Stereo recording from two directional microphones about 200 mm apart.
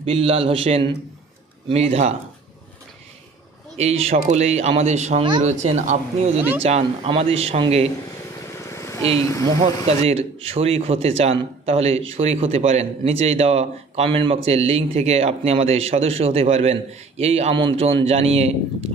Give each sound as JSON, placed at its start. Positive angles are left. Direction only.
{"t": 0.0, "sound": "a man's voice", "side_deg": -30}
{"t": 4.0, "sound": "a man's voice", "side_deg": -30}
{"t": 9.2, "sound": "speech", "side_deg": 15}
{"t": 9.8, "sound": "a man's voice", "side_deg": -30}